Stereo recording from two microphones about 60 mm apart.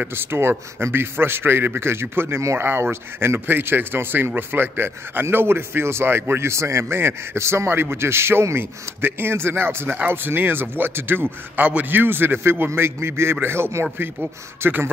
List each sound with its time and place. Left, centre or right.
0.1 s a man's voice: right
11.6 s a man's voice: right